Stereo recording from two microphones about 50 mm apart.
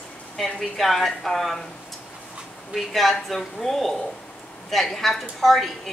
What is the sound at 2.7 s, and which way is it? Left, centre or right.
A woman's voice, centre.